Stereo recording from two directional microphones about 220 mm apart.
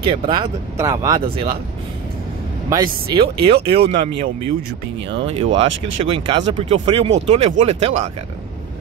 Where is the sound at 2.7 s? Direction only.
15° right (ahead or behind).